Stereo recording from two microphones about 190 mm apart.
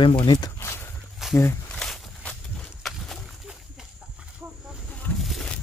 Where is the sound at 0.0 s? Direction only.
30° left (ahead or behind).